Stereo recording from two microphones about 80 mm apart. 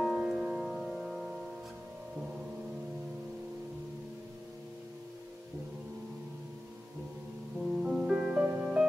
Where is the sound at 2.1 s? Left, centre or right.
Centre.